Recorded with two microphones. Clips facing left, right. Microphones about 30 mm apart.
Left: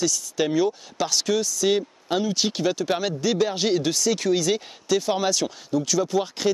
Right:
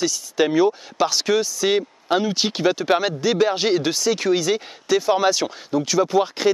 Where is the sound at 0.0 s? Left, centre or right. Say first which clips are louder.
Right 4 dB; right.